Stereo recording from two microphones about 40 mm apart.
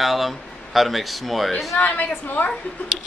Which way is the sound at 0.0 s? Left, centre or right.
Centre.